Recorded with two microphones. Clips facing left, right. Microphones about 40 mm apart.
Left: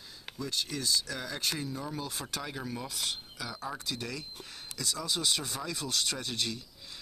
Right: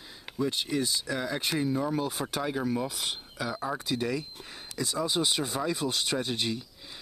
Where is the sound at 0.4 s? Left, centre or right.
Right.